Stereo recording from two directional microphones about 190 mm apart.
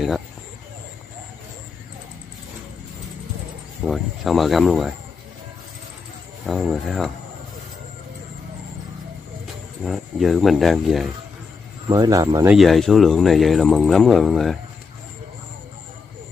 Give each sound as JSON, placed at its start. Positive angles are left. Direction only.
{"t": 3.8, "sound": "speech", "side_deg": 0}
{"t": 6.4, "sound": "speech", "side_deg": 0}
{"t": 9.8, "sound": "speech", "side_deg": 0}
{"t": 11.9, "sound": "speech", "side_deg": -20}
{"t": 12.4, "sound": "speech", "side_deg": 0}